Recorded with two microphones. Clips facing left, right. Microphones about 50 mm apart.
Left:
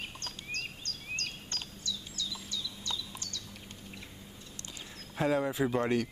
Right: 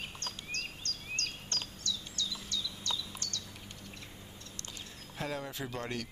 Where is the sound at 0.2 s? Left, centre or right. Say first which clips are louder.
Even; centre.